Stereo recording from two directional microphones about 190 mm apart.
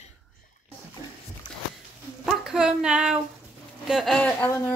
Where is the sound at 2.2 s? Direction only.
Centre (ahead or behind).